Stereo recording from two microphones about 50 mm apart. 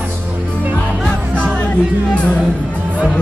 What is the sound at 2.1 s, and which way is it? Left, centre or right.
Speech, left.